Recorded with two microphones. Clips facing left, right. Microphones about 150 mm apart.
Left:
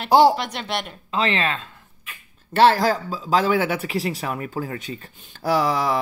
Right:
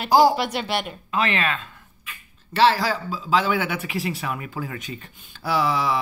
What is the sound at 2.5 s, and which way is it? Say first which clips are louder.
Speech: left 3 dB; 50° left (ahead or behind).